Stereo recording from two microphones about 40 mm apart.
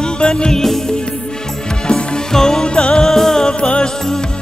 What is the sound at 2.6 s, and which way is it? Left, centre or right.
Music, left.